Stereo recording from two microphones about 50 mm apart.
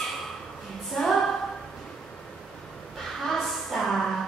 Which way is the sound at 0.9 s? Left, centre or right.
Centre.